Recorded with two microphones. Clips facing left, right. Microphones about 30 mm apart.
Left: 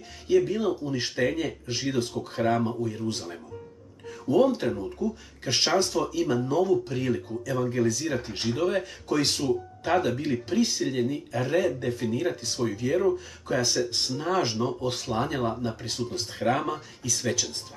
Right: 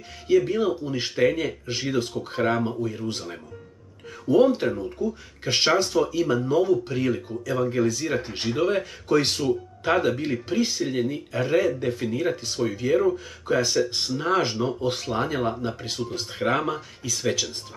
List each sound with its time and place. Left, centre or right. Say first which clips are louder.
0.4 s speech: right 2 dB; right
4.3 s speech: right 3 dB; right
10.5 s speech: right 1 dB; centre